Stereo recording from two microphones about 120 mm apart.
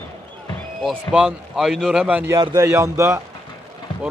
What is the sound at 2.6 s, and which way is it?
Speech, 25° right (ahead or behind).